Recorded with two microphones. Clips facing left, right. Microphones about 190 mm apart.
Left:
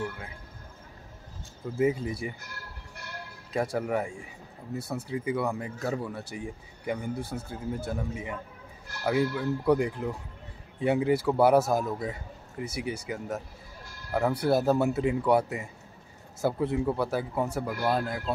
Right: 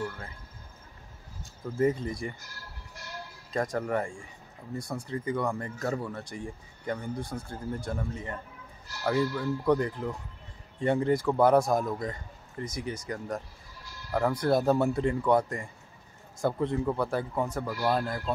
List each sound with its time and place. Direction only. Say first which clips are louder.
1.8 s a man's voice: even; 5° left (ahead or behind)
3.0 s bleat: left 1 dB; 60° left (ahead or behind)
3.5 s a man's voice: left 1 dB; 10° left (ahead or behind)